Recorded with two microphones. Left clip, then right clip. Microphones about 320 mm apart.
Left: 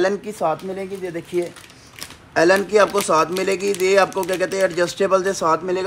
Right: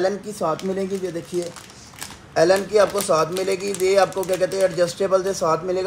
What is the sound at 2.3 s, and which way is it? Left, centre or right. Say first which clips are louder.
Speech: left 2 dB; left.